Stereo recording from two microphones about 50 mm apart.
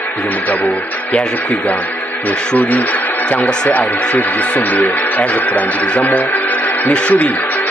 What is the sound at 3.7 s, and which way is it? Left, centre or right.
Speech, left.